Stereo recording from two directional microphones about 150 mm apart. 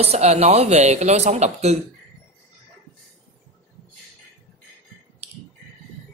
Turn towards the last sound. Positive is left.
turn(degrees=-45)  # may be behind; listen again after turning